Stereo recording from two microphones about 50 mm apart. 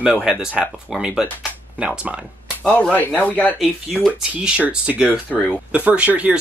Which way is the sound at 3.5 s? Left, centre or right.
Centre.